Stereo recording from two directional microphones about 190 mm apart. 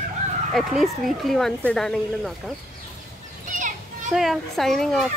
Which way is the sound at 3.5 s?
40° right (ahead or behind).